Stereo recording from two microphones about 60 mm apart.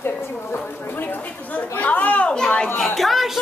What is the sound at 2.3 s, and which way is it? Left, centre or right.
Speech, centre.